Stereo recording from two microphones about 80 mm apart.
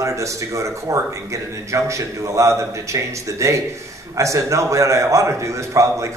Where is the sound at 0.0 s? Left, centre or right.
Right.